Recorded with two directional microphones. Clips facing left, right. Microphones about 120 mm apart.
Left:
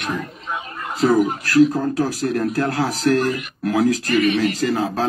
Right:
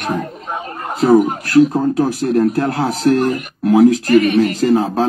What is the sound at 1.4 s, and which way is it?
A man's voice, 25° right (ahead or behind).